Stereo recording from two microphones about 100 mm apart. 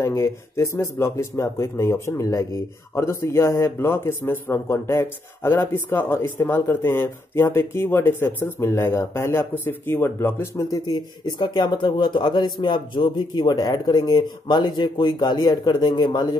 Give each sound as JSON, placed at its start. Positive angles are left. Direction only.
{"t": 0.0, "sound": "a man's voice", "side_deg": 30}
{"t": 10.9, "sound": "speech", "side_deg": 45}